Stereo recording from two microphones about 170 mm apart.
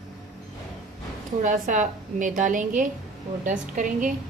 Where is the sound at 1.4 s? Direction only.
50° right (ahead or behind).